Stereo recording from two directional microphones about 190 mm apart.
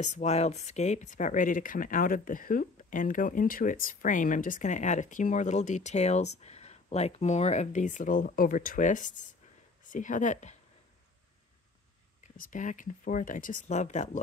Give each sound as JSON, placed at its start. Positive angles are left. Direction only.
{"t": 0.0, "sound": "speech", "side_deg": 35}
{"t": 12.2, "sound": "speech", "side_deg": 45}